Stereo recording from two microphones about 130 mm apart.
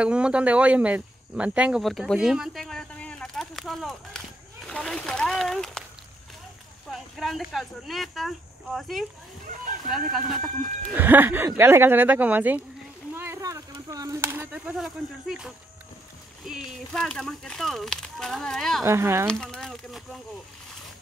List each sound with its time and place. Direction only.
0.0 s speech: 10° right (ahead or behind)
6.9 s speech: centre (ahead or behind)
10.1 s speech: centre (ahead or behind)
10.9 s speech: 15° right (ahead or behind)
13.1 s a sound: 20° right (ahead or behind)
13.8 s speech: 25° right (ahead or behind); by 18.9 s 5° left (ahead or behind)
18.9 s speech: 20° right (ahead or behind)
19.2 s speech: 5° left (ahead or behind)